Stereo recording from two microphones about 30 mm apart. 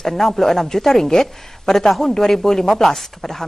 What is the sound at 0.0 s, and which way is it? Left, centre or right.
Speech, centre.